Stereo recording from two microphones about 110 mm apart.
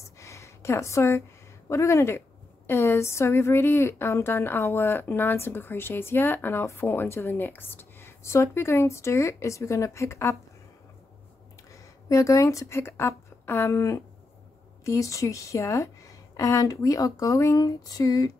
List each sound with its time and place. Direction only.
0.2 s a sound: 25° left (ahead or behind)
1.7 s a woman's voice: 25° left (ahead or behind)
11.7 s a woman's voice: 30° left (ahead or behind)